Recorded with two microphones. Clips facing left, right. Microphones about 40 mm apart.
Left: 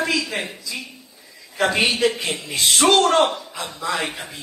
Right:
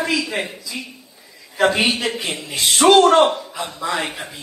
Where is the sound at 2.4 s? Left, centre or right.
Centre.